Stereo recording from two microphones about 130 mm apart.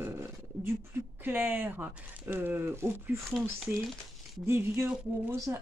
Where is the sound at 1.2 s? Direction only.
15° right (ahead or behind).